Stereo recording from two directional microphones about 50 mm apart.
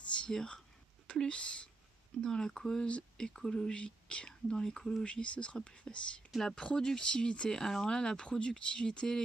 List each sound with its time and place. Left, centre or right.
0.3 s speech: centre
5.0 s speech: left
6.3 s speech: centre